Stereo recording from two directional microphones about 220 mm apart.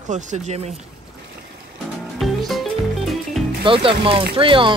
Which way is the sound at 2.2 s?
Centre (ahead or behind).